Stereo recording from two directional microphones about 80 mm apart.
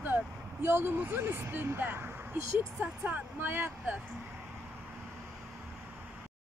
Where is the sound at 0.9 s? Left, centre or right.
Right.